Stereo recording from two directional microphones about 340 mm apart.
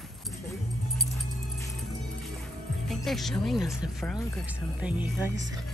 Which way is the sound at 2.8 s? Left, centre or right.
Centre.